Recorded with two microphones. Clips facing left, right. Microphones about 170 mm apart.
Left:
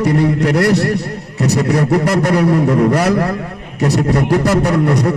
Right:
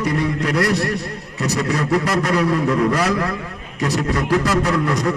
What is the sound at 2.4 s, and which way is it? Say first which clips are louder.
Speech: left 5 dB; 35° left (ahead or behind).